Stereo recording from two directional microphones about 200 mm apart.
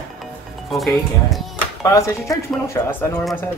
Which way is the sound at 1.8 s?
15° left (ahead or behind).